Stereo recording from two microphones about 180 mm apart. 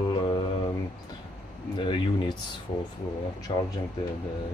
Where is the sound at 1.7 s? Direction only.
25° left (ahead or behind).